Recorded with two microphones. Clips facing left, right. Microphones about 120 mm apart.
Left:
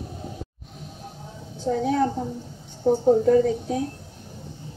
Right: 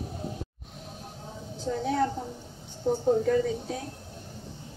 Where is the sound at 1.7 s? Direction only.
40° left (ahead or behind).